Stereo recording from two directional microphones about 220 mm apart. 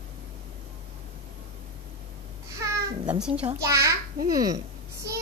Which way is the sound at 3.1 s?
5° right (ahead or behind).